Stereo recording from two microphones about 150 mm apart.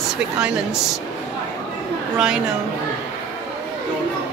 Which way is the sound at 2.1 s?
5° right (ahead or behind).